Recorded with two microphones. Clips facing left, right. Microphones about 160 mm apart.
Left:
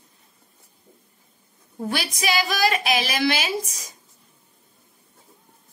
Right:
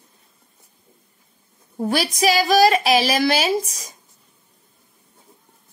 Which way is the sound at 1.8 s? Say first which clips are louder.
Right 7 dB; 40° right (ahead or behind).